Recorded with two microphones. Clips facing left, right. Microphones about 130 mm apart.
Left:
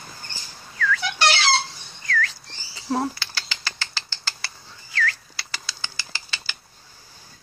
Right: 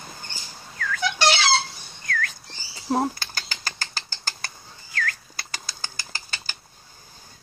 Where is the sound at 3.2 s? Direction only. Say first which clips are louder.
Left 1 dB; 45° right (ahead or behind).